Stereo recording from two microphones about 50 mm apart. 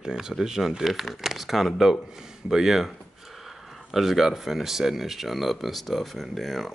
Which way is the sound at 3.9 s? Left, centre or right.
Centre.